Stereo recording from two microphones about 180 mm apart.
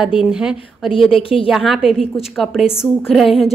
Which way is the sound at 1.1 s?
30° left (ahead or behind).